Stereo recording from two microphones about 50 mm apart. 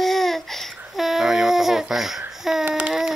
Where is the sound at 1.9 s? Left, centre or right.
Centre.